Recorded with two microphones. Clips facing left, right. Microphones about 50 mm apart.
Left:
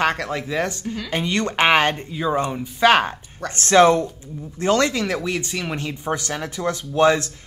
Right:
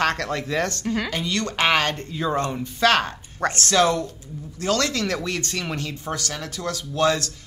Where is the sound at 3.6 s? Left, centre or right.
Left; by 5.7 s centre.